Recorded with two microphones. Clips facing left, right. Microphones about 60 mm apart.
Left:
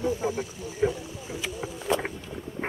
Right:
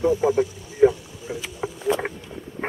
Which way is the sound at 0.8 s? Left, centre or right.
Centre.